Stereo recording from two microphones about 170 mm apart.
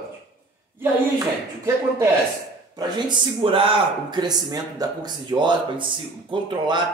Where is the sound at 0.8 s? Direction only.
20° right (ahead or behind).